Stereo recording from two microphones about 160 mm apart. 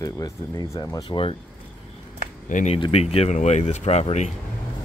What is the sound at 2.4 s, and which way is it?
Speech, 50° left (ahead or behind).